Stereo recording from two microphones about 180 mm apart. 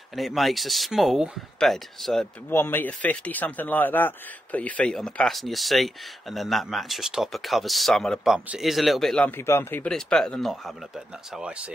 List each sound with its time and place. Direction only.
0.1 s speech: centre (ahead or behind)
2.5 s speech: 10° left (ahead or behind)
9.5 s speech: 15° left (ahead or behind)